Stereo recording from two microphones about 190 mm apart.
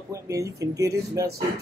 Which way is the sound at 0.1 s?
15° right (ahead or behind).